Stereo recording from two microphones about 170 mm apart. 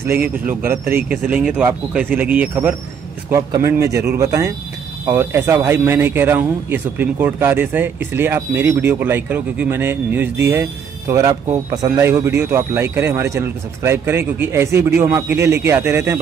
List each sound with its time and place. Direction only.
0.0 s speech: 10° right (ahead or behind)